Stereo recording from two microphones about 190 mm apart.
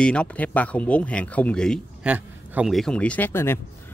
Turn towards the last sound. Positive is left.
turn(degrees=10)  # may be behind; listen again after turning